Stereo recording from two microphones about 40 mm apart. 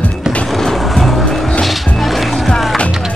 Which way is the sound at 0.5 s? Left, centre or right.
Centre.